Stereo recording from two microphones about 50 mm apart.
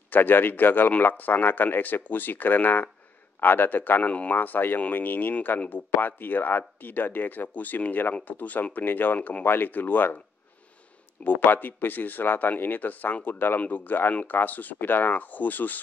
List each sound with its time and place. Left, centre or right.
0.1 s speech: left
4.1 s speech: left
4.4 s speech: left
11.2 s speech: left